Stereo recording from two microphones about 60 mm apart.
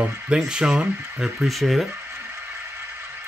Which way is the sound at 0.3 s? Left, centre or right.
Centre.